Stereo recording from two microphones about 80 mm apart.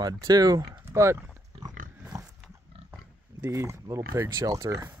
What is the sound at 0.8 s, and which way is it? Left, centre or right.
Speech, right.